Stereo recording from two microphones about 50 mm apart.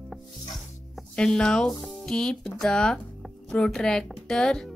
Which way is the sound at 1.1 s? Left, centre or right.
Centre.